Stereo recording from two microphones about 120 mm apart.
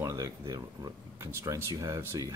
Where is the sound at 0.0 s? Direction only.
30° right (ahead or behind).